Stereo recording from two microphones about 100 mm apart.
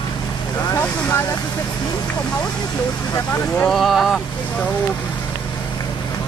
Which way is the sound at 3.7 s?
Centre (ahead or behind).